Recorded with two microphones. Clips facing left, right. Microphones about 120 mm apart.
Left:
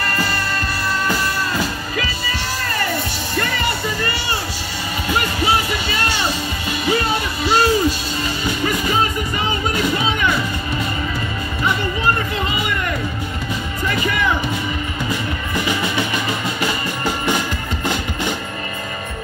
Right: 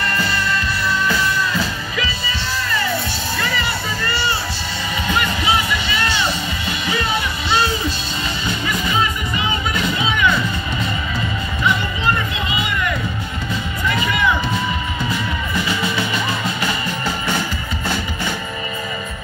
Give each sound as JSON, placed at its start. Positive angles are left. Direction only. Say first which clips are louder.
{"t": 2.0, "sound": "music", "louder": "even", "side_deg": 45}
{"t": 5.2, "sound": "music", "louder": "left 1 dB", "side_deg": 45}
{"t": 10.0, "sound": "music", "louder": "right 1 dB", "side_deg": 50}
{"t": 12.4, "sound": "music", "louder": "even", "side_deg": 50}
{"t": 15.5, "sound": "music", "louder": "left 2 dB", "side_deg": 15}
{"t": 17.3, "sound": "music", "louder": "left 2 dB", "side_deg": 15}